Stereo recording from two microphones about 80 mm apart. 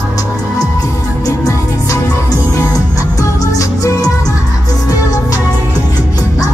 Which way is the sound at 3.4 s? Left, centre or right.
Left.